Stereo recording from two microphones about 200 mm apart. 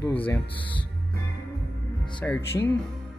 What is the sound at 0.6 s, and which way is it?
Speech, 25° left (ahead or behind).